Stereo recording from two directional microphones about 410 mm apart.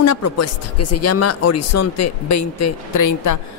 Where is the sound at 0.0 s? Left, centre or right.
Left.